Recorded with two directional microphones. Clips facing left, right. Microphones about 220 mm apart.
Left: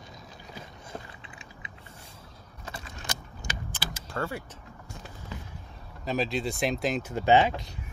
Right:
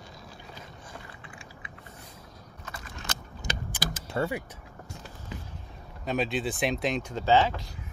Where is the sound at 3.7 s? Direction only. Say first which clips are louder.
Right 6 dB; 15° right (ahead or behind).